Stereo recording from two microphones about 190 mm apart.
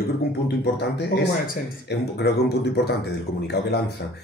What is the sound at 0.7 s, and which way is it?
Speech, 60° left (ahead or behind).